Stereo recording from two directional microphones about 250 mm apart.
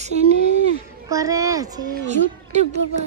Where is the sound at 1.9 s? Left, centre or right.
Right.